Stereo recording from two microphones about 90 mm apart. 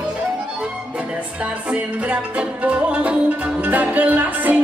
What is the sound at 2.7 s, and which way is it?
Music, 15° right (ahead or behind).